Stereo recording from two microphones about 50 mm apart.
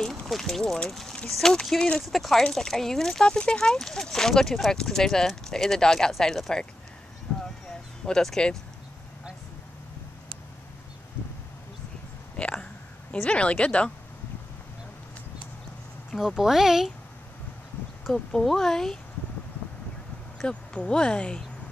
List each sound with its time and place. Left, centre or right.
0.3 s speech: centre
8.0 s speech: centre
12.4 s a sound: centre
13.1 s speech: left
16.2 s speech: centre
18.1 s speech: centre
20.4 s speech: centre